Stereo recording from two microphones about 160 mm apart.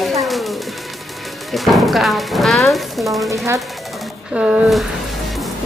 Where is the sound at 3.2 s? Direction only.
20° right (ahead or behind).